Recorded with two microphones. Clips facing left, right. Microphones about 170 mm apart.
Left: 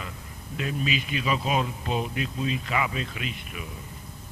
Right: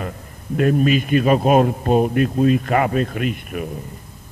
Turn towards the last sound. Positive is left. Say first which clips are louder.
# right 12 dB
turn(degrees=-50)  # may be behind; listen again after turning